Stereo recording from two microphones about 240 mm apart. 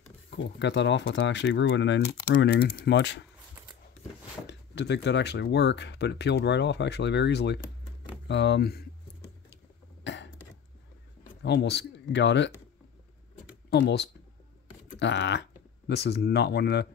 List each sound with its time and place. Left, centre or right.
0.4 s speech: left
2.4 s speech: left
4.5 s speech: left
10.0 s cough: left
11.4 s speech: left
13.7 s speech: left